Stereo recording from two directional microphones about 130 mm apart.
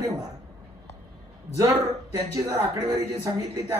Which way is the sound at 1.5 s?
25° right (ahead or behind).